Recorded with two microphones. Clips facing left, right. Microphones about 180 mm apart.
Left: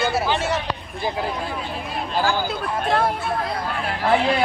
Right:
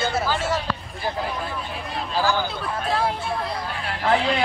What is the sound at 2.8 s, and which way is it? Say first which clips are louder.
Speech: left 3 dB; 50° left (ahead or behind).